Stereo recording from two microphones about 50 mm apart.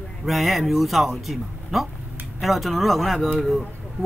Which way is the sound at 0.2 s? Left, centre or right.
Centre.